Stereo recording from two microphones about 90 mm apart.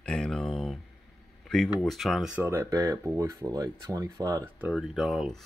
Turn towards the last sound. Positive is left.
turn(degrees=0)  # may be behind; listen again after turning